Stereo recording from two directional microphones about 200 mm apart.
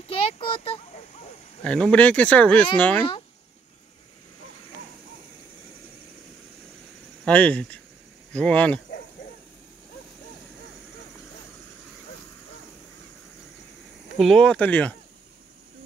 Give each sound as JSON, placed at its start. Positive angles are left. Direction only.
{"t": 0.1, "sound": "a sound", "side_deg": 25}
{"t": 1.6, "sound": "speech", "side_deg": 5}
{"t": 7.2, "sound": "speech", "side_deg": 5}
{"t": 14.1, "sound": "speech", "side_deg": 0}